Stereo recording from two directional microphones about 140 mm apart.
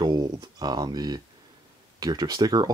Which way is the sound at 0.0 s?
30° right (ahead or behind).